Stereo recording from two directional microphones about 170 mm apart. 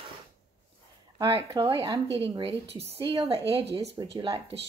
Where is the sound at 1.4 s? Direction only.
25° right (ahead or behind).